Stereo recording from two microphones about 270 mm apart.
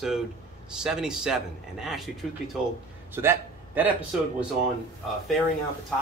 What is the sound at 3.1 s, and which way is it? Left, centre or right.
Speech, centre.